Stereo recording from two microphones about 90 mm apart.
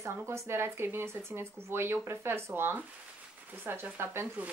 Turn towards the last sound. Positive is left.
turn(degrees=-25)  # may be behind; listen again after turning